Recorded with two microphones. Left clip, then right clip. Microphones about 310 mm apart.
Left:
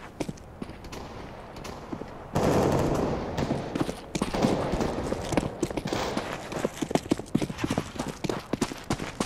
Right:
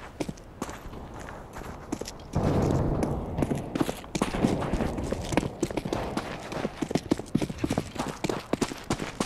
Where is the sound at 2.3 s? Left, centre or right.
Left.